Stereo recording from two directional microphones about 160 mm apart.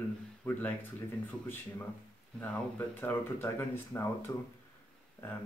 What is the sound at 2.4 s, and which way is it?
Speech, 10° left (ahead or behind).